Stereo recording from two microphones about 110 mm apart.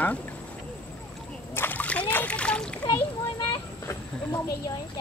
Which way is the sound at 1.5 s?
15° left (ahead or behind).